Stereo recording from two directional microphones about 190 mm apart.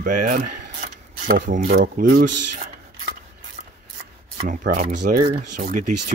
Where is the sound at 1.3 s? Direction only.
45° right (ahead or behind).